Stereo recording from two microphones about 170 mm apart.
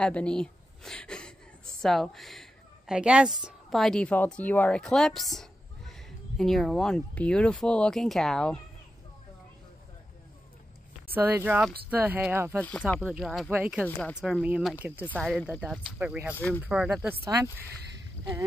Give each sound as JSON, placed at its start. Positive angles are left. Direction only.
{"t": 0.0, "sound": "a woman's voice", "side_deg": 5}
{"t": 11.1, "sound": "speech", "side_deg": -10}
{"t": 12.5, "sound": "a woman's voice", "side_deg": 10}
{"t": 13.8, "sound": "a woman's voice", "side_deg": 5}
{"t": 16.3, "sound": "speech", "side_deg": 10}
{"t": 16.6, "sound": "speech", "side_deg": -5}
{"t": 17.2, "sound": "speech", "side_deg": -20}